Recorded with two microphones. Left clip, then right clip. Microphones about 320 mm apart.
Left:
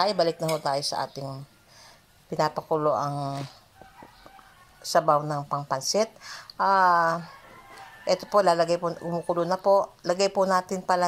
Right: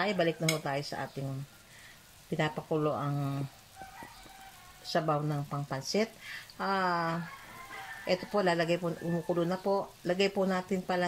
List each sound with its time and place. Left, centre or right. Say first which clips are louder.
0.0 s speech: left 6 dB; left
5.1 s speech: left 9 dB; left